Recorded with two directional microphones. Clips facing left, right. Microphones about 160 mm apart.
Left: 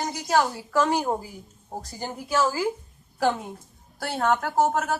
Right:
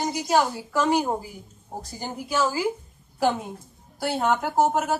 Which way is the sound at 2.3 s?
20° right (ahead or behind).